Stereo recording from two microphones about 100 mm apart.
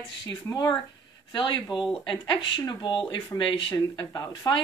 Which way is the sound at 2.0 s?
55° left (ahead or behind).